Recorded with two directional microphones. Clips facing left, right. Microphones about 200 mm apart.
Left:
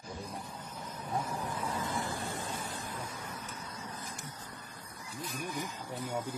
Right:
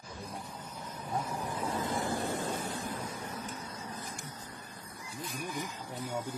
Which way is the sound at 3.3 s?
30° right (ahead or behind).